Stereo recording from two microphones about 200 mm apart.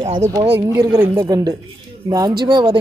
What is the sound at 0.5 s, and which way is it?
Speech, 15° right (ahead or behind).